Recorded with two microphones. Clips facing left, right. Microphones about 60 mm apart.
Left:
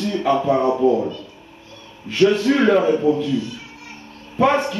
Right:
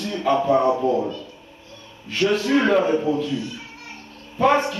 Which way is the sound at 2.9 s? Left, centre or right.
Centre.